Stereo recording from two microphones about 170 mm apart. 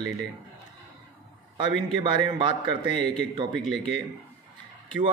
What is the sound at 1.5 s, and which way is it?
A man's voice, 30° right (ahead or behind).